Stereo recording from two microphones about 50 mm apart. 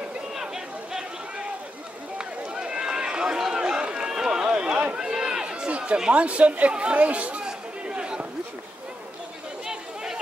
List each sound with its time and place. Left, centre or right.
2.1 s run: centre
6.2 s speech: right
6.7 s chatter: right